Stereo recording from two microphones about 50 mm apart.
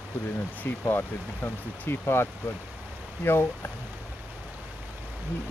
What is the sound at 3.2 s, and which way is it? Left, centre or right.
Speech, left.